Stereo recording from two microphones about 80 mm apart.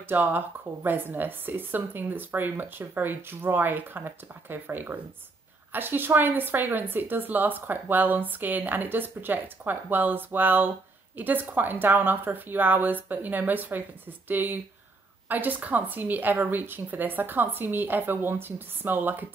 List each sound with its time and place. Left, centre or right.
0.1 s a woman's voice: right